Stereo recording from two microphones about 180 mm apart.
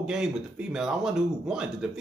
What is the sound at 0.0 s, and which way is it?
Speech, 5° right (ahead or behind).